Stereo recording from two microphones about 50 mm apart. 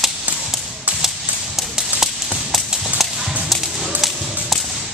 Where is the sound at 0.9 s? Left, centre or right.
Right.